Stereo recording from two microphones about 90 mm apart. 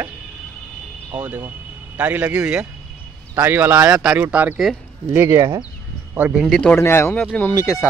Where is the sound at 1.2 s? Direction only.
20° right (ahead or behind).